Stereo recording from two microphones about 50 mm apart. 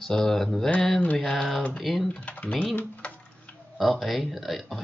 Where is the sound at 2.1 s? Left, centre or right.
Left.